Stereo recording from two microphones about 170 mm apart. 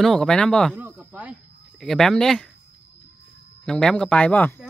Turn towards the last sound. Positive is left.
turn(degrees=10)  # may be behind; listen again after turning